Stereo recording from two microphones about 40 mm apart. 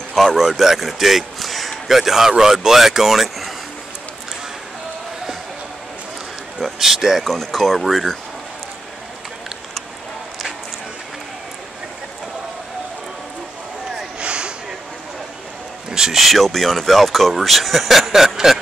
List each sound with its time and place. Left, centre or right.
0.1 s a man's voice: centre
6.8 s speech: centre
7.2 s speech: centre
14.2 s a sound: right
15.9 s speech: centre